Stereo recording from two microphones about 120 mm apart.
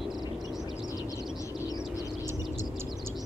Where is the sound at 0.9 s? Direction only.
30° left (ahead or behind).